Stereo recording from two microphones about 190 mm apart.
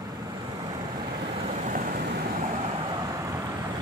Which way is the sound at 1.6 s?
45° right (ahead or behind).